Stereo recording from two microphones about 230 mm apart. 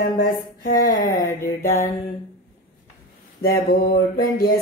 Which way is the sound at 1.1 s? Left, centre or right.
Centre.